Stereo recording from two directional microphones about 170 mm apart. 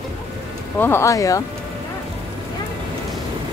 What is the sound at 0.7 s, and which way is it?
Speech, 15° left (ahead or behind).